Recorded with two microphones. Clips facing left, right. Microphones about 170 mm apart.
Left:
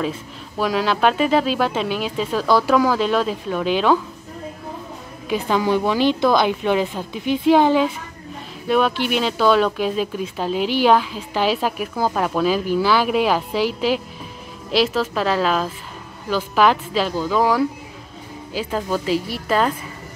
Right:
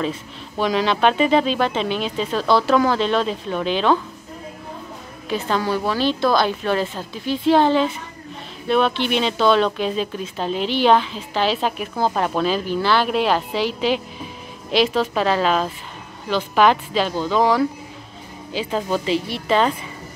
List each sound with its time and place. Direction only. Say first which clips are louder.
0.6 s speech: even; 5° left (ahead or behind)
5.3 s a woman's voice: left 3 dB; 15° left (ahead or behind)